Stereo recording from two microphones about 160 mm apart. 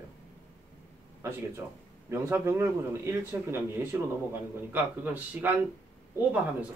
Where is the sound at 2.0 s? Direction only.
15° right (ahead or behind).